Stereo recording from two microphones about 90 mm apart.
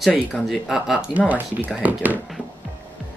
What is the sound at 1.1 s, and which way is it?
Speech, 15° right (ahead or behind).